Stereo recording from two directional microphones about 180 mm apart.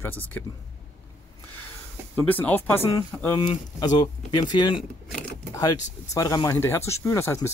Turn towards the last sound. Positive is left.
turn(degrees=15)  # may be behind; listen again after turning